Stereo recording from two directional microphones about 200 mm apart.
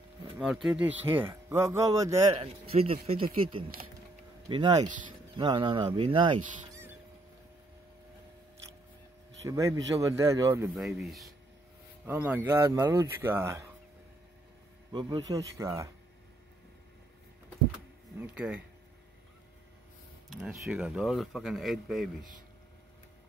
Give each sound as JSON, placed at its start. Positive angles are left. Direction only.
{"t": 0.4, "sound": "speech", "side_deg": -5}
{"t": 2.7, "sound": "speech", "side_deg": -30}
{"t": 5.4, "sound": "speech", "side_deg": -20}
{"t": 9.5, "sound": "speech", "side_deg": -15}
{"t": 10.7, "sound": "speech", "side_deg": 0}
{"t": 14.9, "sound": "speech", "side_deg": -20}
{"t": 18.2, "sound": "speech", "side_deg": -5}
{"t": 20.2, "sound": "speech", "side_deg": -5}